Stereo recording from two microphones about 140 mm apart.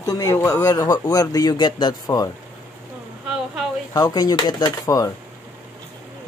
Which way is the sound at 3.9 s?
25° left (ahead or behind).